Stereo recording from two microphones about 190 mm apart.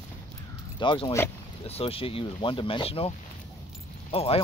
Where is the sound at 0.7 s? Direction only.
25° left (ahead or behind).